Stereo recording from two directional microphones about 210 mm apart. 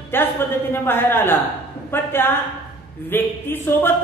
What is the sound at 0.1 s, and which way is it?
Speech, 10° left (ahead or behind).